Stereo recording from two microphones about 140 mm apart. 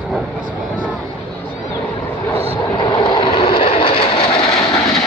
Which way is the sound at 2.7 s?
30° left (ahead or behind).